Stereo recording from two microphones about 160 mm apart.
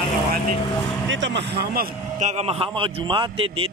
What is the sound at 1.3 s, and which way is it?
Speech, 90° right.